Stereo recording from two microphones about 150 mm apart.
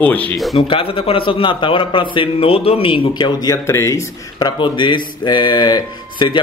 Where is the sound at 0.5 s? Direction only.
40° left (ahead or behind).